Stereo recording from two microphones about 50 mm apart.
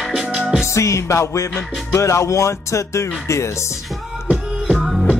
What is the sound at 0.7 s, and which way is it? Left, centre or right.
Speech, left.